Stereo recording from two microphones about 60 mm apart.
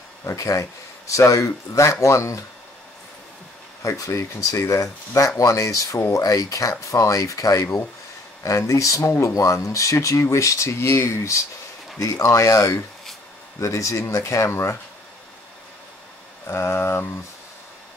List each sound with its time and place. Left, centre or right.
0.2 s speech: left
3.8 s speech: left
8.4 s speech: left
12.0 s speech: left
16.4 s speech: left